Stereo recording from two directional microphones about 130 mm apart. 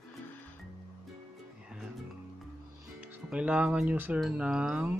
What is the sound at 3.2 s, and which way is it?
Speech, 10° right (ahead or behind).